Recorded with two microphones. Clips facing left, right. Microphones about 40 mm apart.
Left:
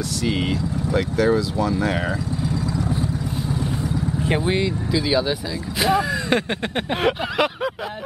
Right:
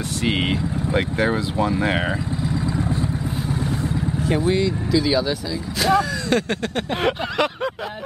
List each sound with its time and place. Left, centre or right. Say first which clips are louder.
0.2 s speech: right 2 dB; right
2.4 s vehicle: right 1 dB; right
4.2 s speech: right 2 dB; left
4.9 s speech: right 1 dB; centre
7.0 s a sound: left 1 dB; centre